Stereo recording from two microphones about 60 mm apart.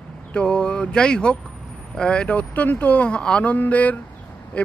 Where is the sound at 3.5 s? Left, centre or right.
Left.